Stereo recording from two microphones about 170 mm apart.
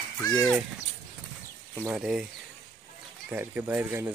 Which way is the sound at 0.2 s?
20° left (ahead or behind).